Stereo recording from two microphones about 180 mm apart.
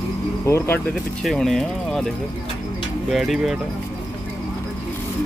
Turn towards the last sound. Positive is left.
turn(degrees=0)  # may be behind; listen again after turning